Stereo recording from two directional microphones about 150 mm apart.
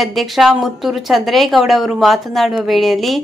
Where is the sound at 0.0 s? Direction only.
Centre (ahead or behind).